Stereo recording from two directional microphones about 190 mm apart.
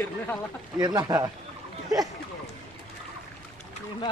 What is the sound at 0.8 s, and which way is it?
Speech, 20° right (ahead or behind).